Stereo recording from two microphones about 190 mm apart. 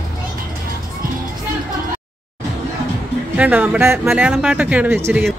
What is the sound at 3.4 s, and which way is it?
A woman's voice, 10° right (ahead or behind).